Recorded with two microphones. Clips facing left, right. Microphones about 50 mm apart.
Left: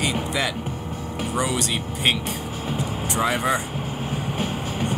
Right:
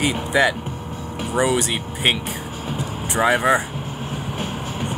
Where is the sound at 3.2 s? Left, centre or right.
Right.